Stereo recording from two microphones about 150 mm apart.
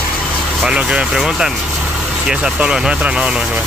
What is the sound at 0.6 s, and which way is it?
Speech, 5° right (ahead or behind).